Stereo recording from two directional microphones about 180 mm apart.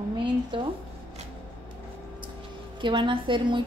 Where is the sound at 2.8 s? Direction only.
25° right (ahead or behind).